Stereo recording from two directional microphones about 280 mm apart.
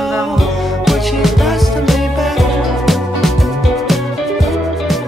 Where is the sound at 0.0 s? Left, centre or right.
Centre.